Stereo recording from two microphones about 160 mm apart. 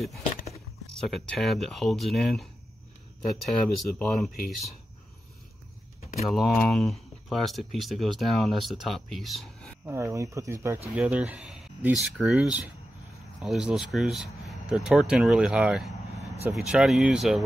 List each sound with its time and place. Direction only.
0.9 s speech: centre (ahead or behind)
6.2 s speech: centre (ahead or behind)
9.8 s speech: 15° right (ahead or behind)